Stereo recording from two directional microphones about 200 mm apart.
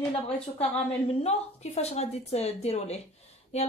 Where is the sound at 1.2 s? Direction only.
30° left (ahead or behind).